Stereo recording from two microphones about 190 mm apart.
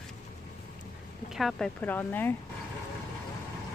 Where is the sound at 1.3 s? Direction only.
Centre (ahead or behind).